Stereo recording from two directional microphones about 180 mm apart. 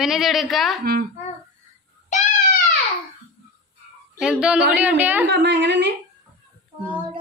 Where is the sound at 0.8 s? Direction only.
60° right (ahead or behind).